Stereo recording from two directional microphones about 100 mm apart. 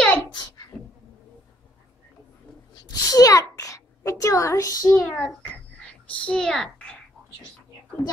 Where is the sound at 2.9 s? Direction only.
40° left (ahead or behind).